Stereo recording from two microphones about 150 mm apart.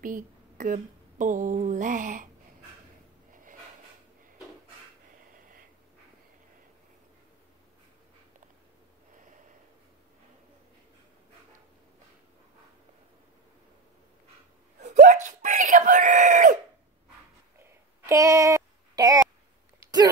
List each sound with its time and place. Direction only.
0.0 s speech: 65° right (ahead or behind)
14.8 s wail: 50° right (ahead or behind)
17.6 s a sound: 15° right (ahead or behind)